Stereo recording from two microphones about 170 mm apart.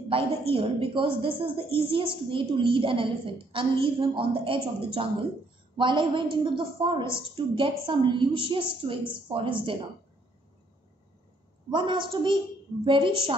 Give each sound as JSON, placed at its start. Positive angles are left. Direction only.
{"t": 0.1, "sound": "a woman's voice", "side_deg": -30}
{"t": 11.7, "sound": "a woman's voice", "side_deg": -30}